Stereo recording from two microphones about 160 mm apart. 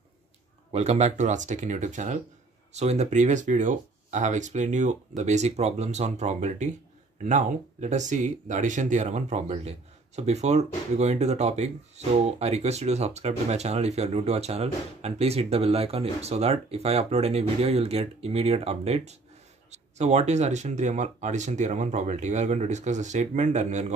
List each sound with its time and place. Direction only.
0.7 s speech: 45° right (ahead or behind)